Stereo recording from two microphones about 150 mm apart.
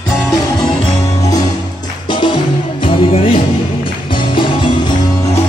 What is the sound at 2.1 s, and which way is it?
Music, 30° left (ahead or behind).